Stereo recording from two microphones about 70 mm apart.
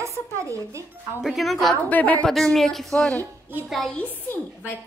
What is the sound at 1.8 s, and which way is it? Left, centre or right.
Speech, left.